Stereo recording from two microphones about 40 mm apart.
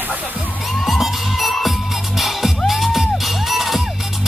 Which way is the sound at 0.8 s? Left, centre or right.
Centre.